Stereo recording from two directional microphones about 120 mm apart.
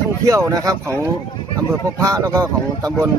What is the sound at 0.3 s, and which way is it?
Speech, 30° right (ahead or behind).